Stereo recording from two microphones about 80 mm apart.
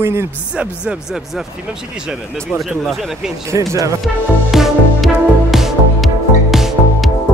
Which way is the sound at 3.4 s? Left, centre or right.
Right.